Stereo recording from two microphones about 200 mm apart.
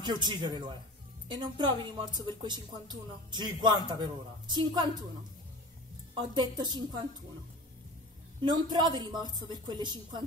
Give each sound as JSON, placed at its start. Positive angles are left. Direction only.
{"t": 0.0, "sound": "speech", "side_deg": -20}
{"t": 6.1, "sound": "speech", "side_deg": -20}
{"t": 8.4, "sound": "speech", "side_deg": -20}